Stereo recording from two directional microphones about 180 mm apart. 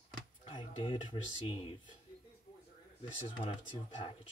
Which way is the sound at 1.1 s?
30° left (ahead or behind).